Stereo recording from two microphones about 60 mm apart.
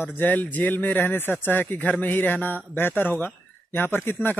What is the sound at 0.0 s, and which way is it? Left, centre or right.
Speech, left.